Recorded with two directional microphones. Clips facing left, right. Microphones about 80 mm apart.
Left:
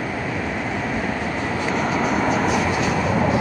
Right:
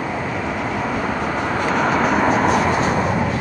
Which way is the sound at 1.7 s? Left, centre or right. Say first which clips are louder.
Right 4 dB; right.